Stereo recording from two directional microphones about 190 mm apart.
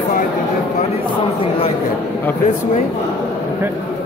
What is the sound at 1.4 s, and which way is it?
Speech, 30° left (ahead or behind).